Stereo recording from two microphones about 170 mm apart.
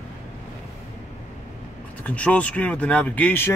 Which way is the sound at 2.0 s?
10° left (ahead or behind).